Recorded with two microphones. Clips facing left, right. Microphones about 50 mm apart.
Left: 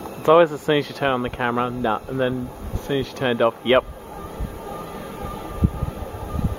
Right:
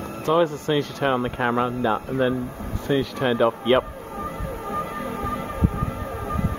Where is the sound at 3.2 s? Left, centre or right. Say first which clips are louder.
Left 1 dB; left.